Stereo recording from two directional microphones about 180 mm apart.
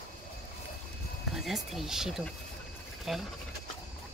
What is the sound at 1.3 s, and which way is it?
Speech, centre (ahead or behind).